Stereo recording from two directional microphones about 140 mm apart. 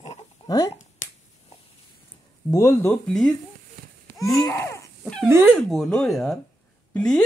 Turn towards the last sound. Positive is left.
turn(degrees=5)  # may be behind; listen again after turning